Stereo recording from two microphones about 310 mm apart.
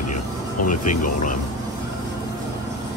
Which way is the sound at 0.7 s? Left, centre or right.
Left.